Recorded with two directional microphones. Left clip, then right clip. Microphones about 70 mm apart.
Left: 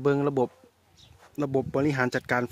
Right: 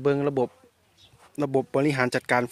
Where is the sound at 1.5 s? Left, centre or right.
Centre.